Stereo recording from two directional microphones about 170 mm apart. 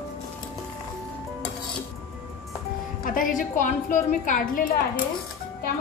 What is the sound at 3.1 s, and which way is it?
A woman's voice, 50° left (ahead or behind).